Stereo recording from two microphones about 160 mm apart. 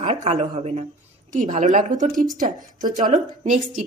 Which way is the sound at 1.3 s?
50° right (ahead or behind).